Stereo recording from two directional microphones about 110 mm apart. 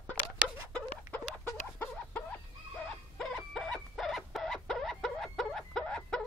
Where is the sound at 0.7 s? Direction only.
20° left (ahead or behind).